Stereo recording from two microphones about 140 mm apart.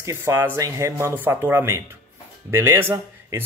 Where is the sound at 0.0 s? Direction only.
20° right (ahead or behind).